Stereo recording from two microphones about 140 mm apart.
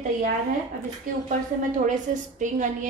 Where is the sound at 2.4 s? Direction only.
65° right (ahead or behind).